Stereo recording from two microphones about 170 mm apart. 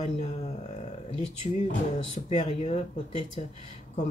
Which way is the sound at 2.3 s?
35° left (ahead or behind).